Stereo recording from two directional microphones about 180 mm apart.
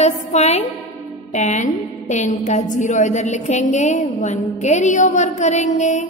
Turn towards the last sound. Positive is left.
turn(degrees=40)  # may be behind; listen again after turning